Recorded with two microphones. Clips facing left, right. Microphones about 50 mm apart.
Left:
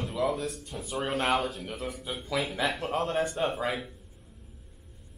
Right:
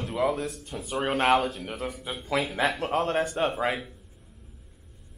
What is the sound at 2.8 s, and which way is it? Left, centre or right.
Speech, right.